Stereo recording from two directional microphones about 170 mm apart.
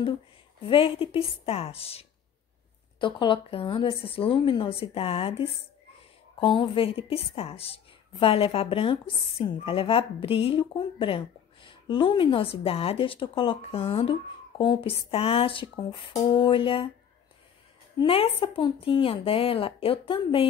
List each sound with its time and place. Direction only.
0.7 s a woman's voice: 30° left (ahead or behind)
17.9 s a woman's voice: 35° left (ahead or behind)